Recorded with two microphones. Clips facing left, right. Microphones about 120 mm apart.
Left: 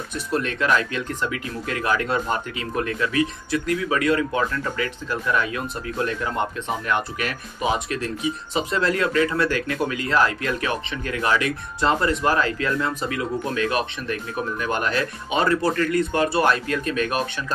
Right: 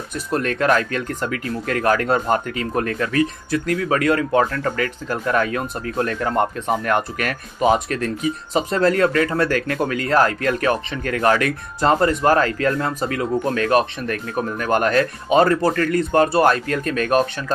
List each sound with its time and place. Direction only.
0.3 s speech: 45° right (ahead or behind)